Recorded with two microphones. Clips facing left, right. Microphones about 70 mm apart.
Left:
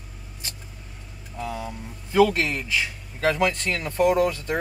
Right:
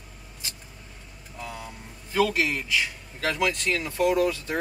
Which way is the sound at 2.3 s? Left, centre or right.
Centre.